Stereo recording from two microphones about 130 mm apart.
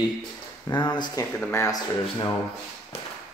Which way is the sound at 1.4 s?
20° left (ahead or behind).